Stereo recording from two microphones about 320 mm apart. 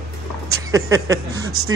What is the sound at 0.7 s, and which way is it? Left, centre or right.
Speech, centre.